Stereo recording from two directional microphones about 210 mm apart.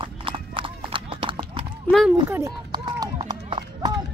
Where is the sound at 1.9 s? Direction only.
Centre (ahead or behind).